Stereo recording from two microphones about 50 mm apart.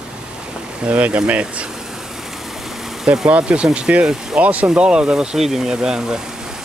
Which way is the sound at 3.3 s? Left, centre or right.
Right.